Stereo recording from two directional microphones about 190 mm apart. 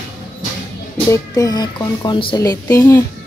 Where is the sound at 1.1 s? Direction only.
20° left (ahead or behind).